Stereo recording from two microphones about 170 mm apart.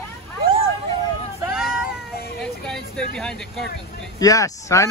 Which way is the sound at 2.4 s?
5° left (ahead or behind).